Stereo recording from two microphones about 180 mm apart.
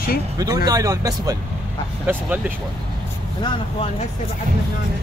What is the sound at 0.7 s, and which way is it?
Speech, 20° right (ahead or behind).